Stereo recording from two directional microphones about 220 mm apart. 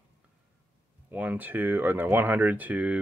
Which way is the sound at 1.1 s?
5° right (ahead or behind).